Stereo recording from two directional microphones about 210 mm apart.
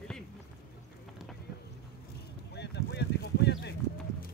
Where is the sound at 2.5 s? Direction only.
55° left (ahead or behind).